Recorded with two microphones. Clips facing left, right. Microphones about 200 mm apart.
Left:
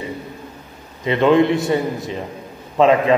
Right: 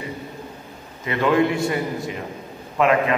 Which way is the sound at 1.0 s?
25° left (ahead or behind).